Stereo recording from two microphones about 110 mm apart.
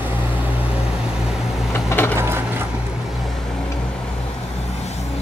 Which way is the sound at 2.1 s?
25° right (ahead or behind).